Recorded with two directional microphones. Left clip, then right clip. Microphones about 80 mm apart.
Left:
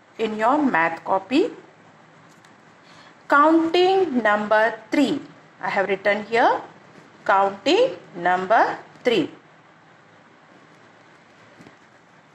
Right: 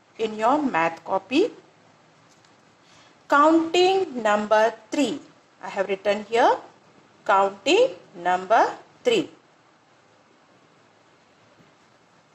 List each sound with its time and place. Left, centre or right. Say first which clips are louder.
0.2 s a woman's voice: left 2 dB; left
3.3 s a woman's voice: left 2 dB; left